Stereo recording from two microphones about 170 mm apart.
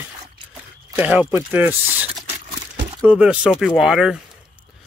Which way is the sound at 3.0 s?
5° right (ahead or behind).